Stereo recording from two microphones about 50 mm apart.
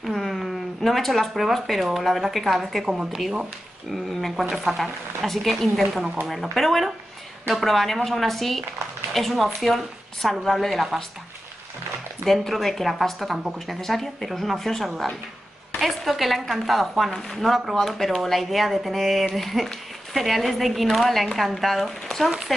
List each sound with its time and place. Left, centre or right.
0.0 s speech: centre
2.8 s a woman's voice: centre
12.3 s speech: centre